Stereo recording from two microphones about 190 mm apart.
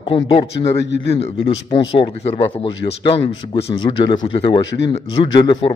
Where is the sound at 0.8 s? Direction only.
70° left (ahead or behind).